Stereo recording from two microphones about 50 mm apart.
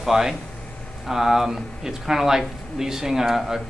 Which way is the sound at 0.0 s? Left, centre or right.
Centre.